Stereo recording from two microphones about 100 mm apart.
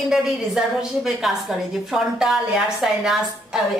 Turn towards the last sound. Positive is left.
turn(degrees=-5)  # may be behind; listen again after turning